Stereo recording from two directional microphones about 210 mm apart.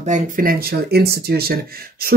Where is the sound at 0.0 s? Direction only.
40° right (ahead or behind).